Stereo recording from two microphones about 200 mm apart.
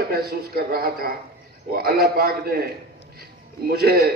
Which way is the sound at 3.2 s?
50° right (ahead or behind).